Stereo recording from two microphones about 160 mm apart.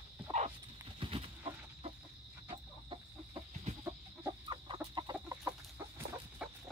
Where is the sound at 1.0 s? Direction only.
35° right (ahead or behind).